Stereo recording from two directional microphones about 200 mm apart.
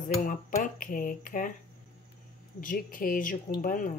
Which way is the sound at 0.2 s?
40° left (ahead or behind).